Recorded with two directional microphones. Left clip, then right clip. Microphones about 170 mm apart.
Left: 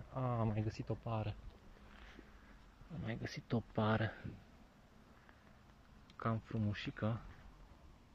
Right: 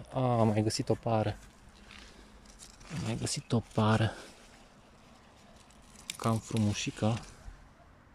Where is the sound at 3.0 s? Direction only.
10° right (ahead or behind).